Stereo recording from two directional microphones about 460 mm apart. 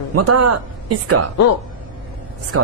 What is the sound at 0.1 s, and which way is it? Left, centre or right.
Speech, right.